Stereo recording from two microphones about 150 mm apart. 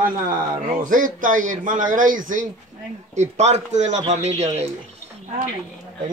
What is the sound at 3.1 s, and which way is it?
Speech, 50° right (ahead or behind).